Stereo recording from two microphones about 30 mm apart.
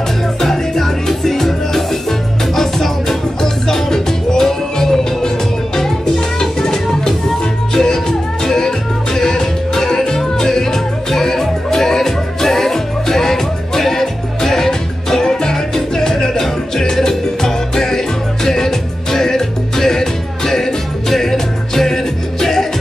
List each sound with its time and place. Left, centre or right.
0.4 s music: centre